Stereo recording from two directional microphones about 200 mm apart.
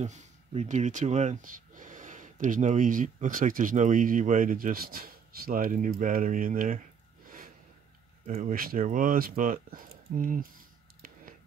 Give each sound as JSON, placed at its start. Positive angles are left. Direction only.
{"t": 0.0, "sound": "speech", "side_deg": -35}
{"t": 7.2, "sound": "snort", "side_deg": -45}
{"t": 8.3, "sound": "speech", "side_deg": -45}